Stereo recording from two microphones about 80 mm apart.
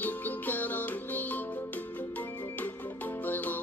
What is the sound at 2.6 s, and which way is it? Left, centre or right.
Music, left.